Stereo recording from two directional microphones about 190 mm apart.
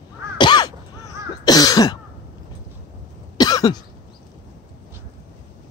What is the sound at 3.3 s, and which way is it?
Cough, 20° left (ahead or behind).